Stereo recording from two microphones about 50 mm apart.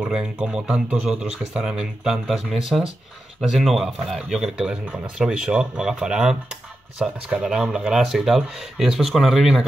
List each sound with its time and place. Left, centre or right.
0.0 s speech: centre
4.3 s speech: centre